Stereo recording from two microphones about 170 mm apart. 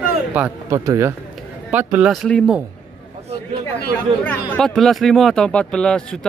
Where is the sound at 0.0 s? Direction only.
10° right (ahead or behind).